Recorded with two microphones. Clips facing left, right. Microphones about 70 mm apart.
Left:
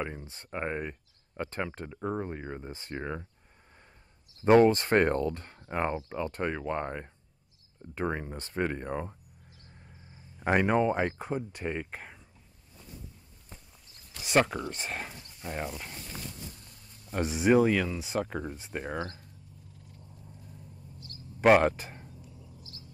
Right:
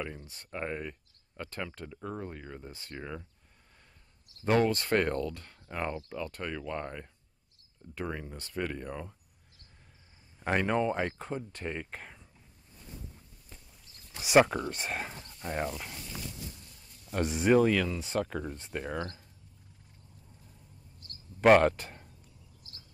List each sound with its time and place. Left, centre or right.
0.0 s speech: left
4.5 s speech: left
10.4 s speech: centre
14.2 s speech: centre
17.1 s speech: centre
21.4 s speech: centre